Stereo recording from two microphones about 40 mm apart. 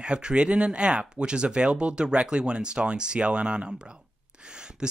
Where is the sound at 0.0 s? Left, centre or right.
Right.